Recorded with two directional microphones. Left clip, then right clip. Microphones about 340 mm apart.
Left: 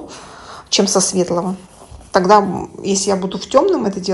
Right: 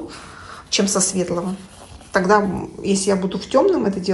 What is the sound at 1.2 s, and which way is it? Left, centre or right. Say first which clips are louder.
Speech: left 5 dB; centre.